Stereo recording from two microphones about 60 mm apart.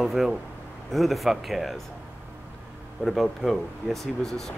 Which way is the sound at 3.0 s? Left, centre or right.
Centre.